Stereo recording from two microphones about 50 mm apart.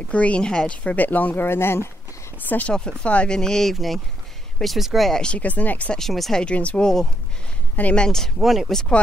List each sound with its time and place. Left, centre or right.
0.1 s speech: left
1.4 s speech: left
2.3 s speech: left
3.0 s speech: left; by 5.1 s centre
5.1 s speech: centre
5.4 s speech: left
5.9 s speech: centre
6.4 s speech: left
6.8 s speech: centre
8.2 s speech: centre